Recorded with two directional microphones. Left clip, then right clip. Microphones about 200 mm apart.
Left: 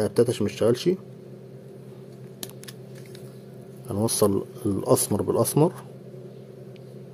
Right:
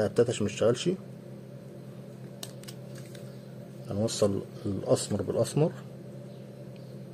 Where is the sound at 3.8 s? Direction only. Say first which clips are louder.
Left 5 dB; 40° left (ahead or behind).